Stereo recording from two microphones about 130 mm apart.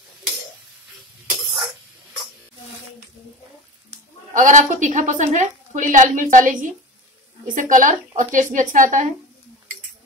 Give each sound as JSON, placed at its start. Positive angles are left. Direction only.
{"t": 4.3, "sound": "a woman's voice", "side_deg": -75}